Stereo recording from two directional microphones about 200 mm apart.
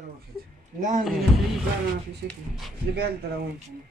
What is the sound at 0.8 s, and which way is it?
Speech, 40° right (ahead or behind).